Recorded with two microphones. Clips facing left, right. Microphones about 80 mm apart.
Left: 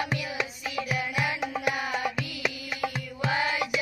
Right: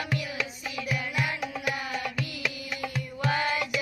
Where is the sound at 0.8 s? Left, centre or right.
Left.